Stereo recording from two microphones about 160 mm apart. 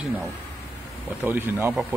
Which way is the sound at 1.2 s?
10° right (ahead or behind).